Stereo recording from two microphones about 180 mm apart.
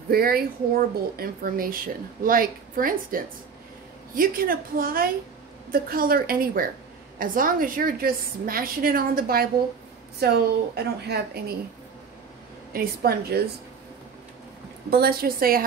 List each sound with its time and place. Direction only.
0.1 s a woman's voice: 55° right (ahead or behind)
12.7 s speech: 60° right (ahead or behind)
14.9 s speech: 60° right (ahead or behind)